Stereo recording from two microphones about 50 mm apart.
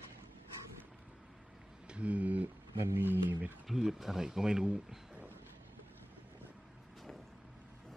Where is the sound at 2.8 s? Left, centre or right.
Right.